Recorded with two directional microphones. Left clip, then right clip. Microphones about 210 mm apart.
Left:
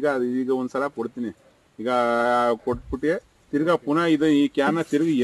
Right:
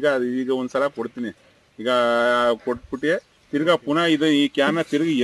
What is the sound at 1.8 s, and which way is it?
Speech, 15° left (ahead or behind).